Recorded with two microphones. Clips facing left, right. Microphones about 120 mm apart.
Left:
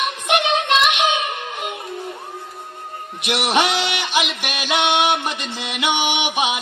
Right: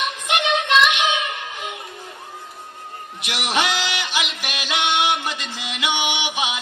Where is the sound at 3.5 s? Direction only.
20° left (ahead or behind).